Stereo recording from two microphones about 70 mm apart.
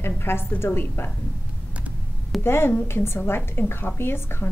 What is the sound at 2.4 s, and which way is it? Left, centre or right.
A woman's voice, left.